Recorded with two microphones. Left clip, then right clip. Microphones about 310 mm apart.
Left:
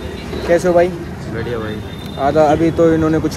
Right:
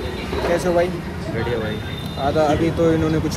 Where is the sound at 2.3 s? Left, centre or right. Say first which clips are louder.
Left 6 dB; left.